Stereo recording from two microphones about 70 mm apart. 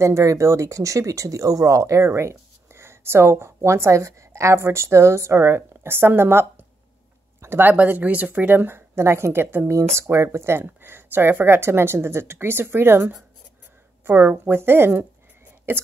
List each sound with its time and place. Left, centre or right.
0.0 s speech: right